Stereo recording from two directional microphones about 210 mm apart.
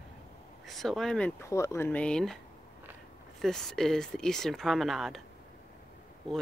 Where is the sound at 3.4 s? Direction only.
Centre (ahead or behind).